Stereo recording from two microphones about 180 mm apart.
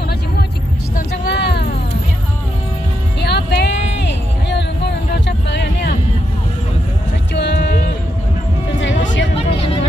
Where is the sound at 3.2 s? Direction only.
65° left (ahead or behind).